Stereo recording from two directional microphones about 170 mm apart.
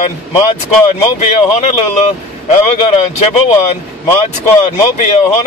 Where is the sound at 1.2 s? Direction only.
40° left (ahead or behind).